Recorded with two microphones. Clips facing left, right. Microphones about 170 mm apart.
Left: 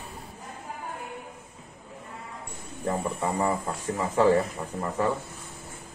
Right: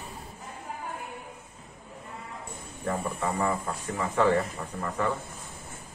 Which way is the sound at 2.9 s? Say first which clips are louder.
Left 2 dB; 25° left (ahead or behind).